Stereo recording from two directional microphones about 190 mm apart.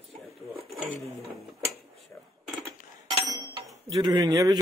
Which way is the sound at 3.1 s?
20° right (ahead or behind).